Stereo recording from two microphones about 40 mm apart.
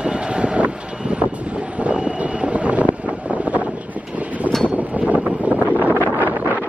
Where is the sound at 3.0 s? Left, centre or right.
Right.